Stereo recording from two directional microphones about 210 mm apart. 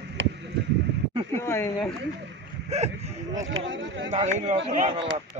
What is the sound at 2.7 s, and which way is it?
Speech, 30° right (ahead or behind).